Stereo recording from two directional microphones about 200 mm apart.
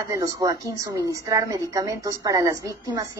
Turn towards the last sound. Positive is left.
turn(degrees=-20)  # may be behind; listen again after turning